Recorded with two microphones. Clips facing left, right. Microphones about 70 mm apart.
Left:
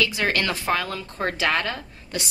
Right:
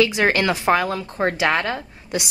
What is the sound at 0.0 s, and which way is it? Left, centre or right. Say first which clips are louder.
A woman's voice: right 6 dB; right.